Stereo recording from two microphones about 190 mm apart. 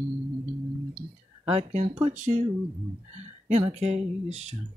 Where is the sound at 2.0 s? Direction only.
40° right (ahead or behind).